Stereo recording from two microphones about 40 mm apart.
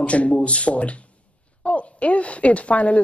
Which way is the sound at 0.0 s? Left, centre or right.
Left.